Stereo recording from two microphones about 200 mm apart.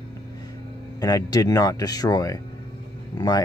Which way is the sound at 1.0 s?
20° left (ahead or behind).